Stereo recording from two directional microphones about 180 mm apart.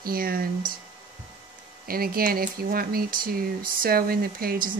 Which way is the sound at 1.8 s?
55° right (ahead or behind).